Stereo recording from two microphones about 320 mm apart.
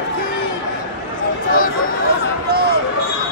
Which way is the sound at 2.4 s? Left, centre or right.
Right.